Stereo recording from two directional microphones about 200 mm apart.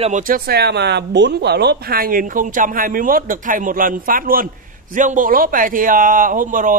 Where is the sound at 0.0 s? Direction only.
40° right (ahead or behind).